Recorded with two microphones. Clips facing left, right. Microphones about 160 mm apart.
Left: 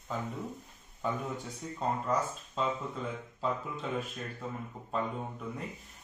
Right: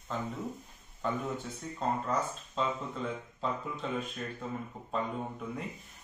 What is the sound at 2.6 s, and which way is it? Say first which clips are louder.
Speech: even; 5° left (ahead or behind).